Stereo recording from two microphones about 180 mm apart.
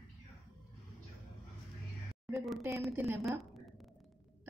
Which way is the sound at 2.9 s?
10° right (ahead or behind).